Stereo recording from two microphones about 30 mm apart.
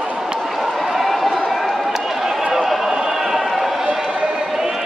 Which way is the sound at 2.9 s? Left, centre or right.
Centre.